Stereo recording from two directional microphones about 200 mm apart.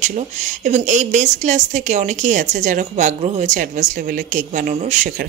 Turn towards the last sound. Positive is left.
turn(degrees=-40)  # may be behind; listen again after turning